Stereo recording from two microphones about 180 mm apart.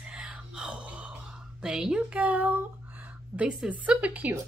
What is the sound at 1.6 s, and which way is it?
Speech, 5° right (ahead or behind).